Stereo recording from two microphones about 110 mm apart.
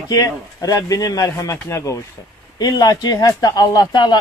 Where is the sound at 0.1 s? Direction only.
35° left (ahead or behind).